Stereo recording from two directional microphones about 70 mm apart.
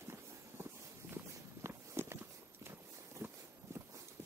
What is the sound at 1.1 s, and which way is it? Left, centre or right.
Walk, right.